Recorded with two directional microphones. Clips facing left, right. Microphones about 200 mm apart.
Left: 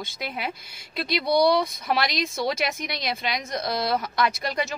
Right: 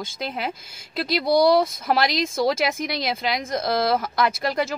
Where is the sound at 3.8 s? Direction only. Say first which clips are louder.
Right 4 dB; 50° right (ahead or behind).